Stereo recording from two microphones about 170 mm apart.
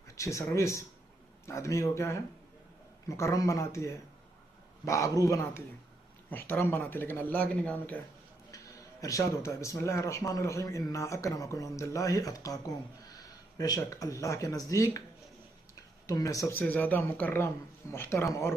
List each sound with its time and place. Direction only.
0.2 s speech: 20° left (ahead or behind)
9.0 s speech: 20° left (ahead or behind)